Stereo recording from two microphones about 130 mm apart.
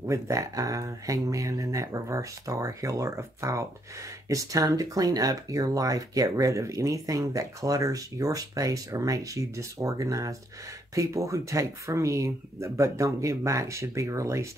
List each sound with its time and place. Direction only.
0.0 s speech: 25° right (ahead or behind)